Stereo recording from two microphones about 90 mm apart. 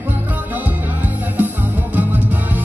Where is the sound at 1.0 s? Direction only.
20° right (ahead or behind).